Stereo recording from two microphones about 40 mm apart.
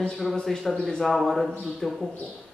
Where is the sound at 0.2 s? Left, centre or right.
Centre.